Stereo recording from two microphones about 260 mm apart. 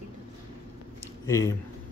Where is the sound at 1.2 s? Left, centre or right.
Centre.